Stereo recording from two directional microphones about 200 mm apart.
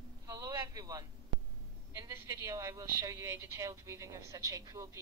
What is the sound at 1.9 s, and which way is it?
Speech, 15° right (ahead or behind).